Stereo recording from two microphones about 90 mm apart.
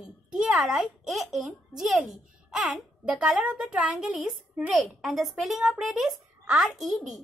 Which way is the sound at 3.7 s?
10° right (ahead or behind).